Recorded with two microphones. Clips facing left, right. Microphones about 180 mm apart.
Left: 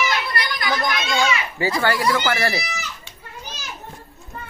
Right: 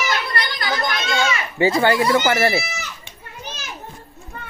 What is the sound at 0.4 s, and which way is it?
Children playing, 30° right (ahead or behind).